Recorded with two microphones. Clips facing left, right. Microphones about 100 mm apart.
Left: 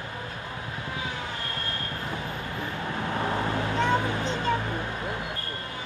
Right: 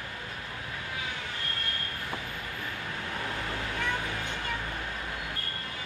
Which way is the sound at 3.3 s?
30° left (ahead or behind).